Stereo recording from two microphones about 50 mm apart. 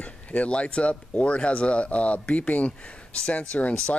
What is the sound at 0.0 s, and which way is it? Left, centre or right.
A man's voice, left.